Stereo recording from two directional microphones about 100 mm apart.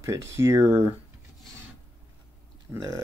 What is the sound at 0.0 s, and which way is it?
Speech, 30° right (ahead or behind).